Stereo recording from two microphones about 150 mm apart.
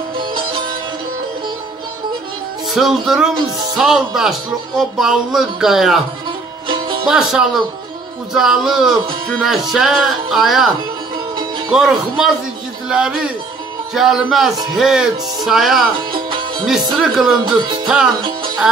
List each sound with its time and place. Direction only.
2.7 s speech: centre (ahead or behind)
7.1 s speech: 5° right (ahead or behind)
11.7 s speech: 5° right (ahead or behind)
16.1 s music: 35° right (ahead or behind)
17.0 s speech: centre (ahead or behind)